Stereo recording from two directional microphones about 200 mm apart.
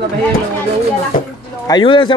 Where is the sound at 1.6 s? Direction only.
25° left (ahead or behind).